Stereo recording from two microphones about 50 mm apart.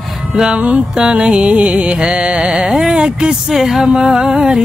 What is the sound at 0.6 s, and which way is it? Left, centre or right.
Music, right.